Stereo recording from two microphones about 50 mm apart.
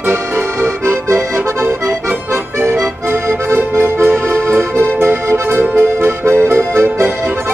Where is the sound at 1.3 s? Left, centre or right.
Right.